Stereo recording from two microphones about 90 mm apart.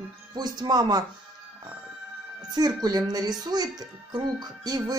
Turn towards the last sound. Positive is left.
turn(degrees=-45)  # may be behind; listen again after turning